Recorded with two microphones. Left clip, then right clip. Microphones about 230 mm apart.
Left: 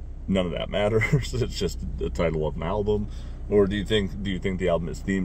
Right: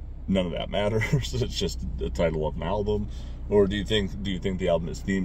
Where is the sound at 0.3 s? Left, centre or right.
Centre.